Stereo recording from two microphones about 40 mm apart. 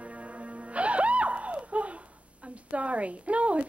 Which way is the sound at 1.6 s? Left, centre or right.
Right.